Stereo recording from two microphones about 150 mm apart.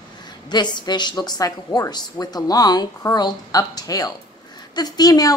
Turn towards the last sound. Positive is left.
turn(degrees=25)  # may be behind; listen again after turning